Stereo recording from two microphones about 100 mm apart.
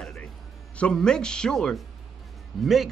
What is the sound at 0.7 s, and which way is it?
Speech, 10° left (ahead or behind).